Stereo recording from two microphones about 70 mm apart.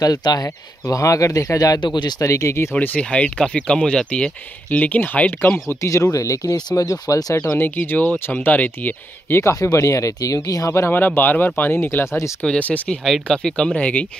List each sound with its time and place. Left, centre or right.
0.0 s speech: left
0.8 s speech: left
2.2 s speech: left
2.7 s speech: left
5.8 s speech: left
7.5 s speech: left
9.6 s speech: left
10.7 s speech: left
11.0 s speech: left
12.4 s speech: left
13.0 s speech: centre